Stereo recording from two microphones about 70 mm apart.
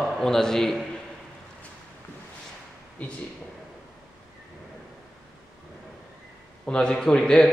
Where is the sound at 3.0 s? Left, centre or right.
Left.